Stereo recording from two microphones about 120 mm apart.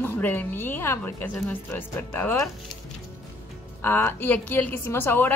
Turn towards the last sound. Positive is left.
turn(degrees=20)  # may be behind; listen again after turning